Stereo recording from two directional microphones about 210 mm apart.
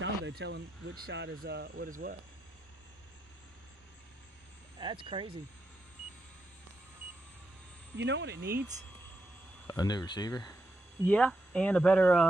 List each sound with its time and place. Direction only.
0.0 s speech: 55° right (ahead or behind)
4.7 s speech: 25° right (ahead or behind)
8.0 s speech: 55° right (ahead or behind)
9.7 s speech: 20° left (ahead or behind)
11.1 s speech: 5° left (ahead or behind)